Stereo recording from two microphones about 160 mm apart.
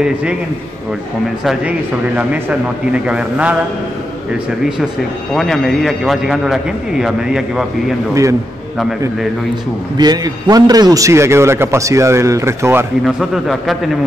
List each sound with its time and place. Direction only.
0.0 s a man's voice: 5° right (ahead or behind)
1.4 s a man's voice: centre (ahead or behind)
2.9 s a man's voice: 5° right (ahead or behind)
5.3 s a man's voice: centre (ahead or behind)
8.1 s a man's voice: 20° right (ahead or behind)
9.9 s a man's voice: 25° right (ahead or behind)
13.0 s a man's voice: centre (ahead or behind)